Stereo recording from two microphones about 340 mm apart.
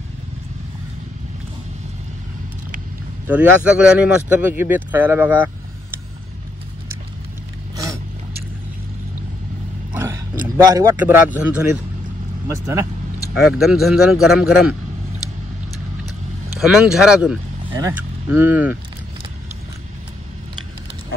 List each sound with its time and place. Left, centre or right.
3.3 s speech: centre
10.6 s speech: centre
16.5 s speech: centre